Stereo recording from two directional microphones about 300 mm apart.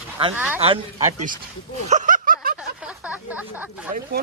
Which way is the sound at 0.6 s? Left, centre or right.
Centre.